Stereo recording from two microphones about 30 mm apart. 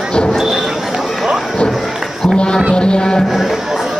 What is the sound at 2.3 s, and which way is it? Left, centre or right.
Music, left.